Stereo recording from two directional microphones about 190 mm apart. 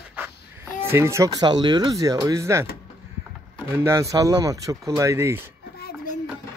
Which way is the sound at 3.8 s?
15° right (ahead or behind).